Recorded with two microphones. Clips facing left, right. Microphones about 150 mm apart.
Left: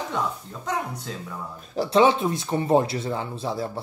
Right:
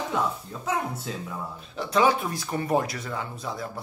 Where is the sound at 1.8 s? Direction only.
30° left (ahead or behind).